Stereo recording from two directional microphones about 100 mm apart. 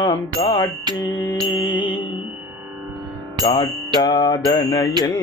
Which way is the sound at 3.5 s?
45° left (ahead or behind).